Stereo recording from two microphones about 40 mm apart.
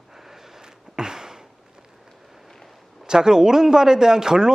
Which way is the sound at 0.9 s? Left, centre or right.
Centre.